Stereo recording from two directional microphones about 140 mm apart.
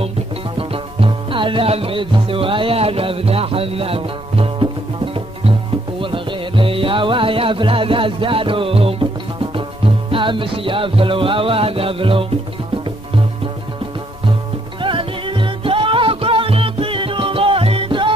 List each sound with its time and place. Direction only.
0.6 s music: 40° right (ahead or behind)
14.8 s music: 40° right (ahead or behind)